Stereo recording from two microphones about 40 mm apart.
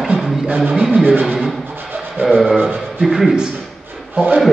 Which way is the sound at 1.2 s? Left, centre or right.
Centre.